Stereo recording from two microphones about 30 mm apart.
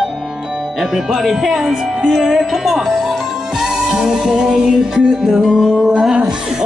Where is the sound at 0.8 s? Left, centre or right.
Centre.